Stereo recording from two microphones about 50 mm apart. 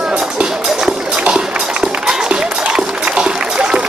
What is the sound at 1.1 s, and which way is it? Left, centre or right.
Music, centre.